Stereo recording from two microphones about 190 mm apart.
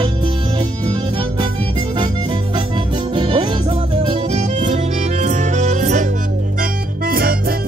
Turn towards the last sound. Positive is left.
turn(degrees=-50)  # may be behind; listen again after turning